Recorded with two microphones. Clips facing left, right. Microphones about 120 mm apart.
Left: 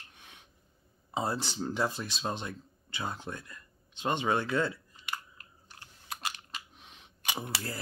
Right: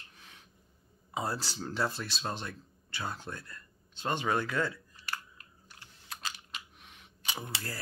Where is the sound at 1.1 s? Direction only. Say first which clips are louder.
Left 3 dB; 20° left (ahead or behind).